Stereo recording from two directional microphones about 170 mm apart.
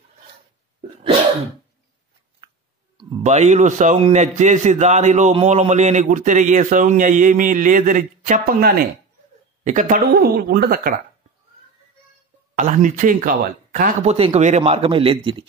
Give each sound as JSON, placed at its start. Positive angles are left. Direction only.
{"t": 3.2, "sound": "a man's voice", "side_deg": -45}
{"t": 9.7, "sound": "speech", "side_deg": -50}
{"t": 12.5, "sound": "a man's voice", "side_deg": -50}
{"t": 14.1, "sound": "speech", "side_deg": -35}